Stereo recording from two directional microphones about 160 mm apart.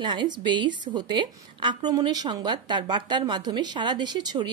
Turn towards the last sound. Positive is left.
turn(degrees=-25)  # may be behind; listen again after turning